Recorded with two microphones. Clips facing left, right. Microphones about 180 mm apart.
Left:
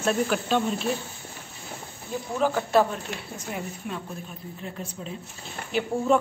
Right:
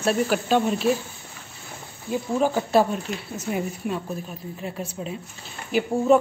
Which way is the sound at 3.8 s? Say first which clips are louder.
Right 6 dB; 55° right (ahead or behind).